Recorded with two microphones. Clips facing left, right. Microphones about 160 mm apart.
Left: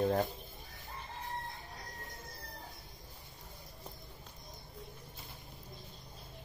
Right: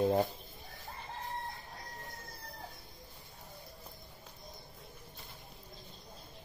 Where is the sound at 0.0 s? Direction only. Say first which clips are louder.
Right 2 dB; 15° right (ahead or behind).